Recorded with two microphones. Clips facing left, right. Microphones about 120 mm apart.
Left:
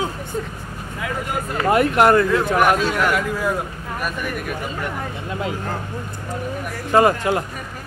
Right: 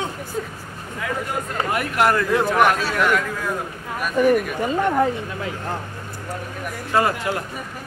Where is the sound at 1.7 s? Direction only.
25° left (ahead or behind).